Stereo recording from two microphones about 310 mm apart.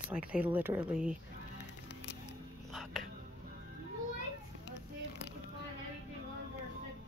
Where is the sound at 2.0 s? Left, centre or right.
Left.